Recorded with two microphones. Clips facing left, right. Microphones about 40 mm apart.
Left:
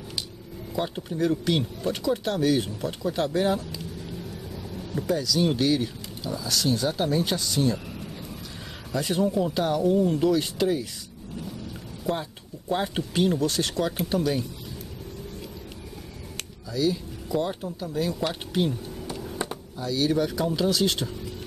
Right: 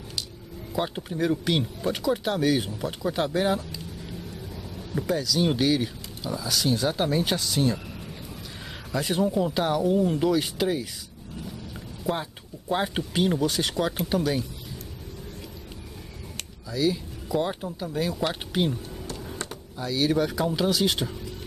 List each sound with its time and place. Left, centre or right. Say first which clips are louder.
0.7 s speech: even; centre
4.9 s speech: even; centre
8.9 s speech: even; centre
12.1 s speech: even; centre
16.3 s a sound: even; centre
17.4 s speech: right 1 dB; centre
19.0 s music: left 5 dB; centre
19.8 s speech: even; centre